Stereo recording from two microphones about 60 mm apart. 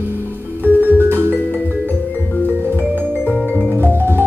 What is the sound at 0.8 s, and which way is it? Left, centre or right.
Music, right.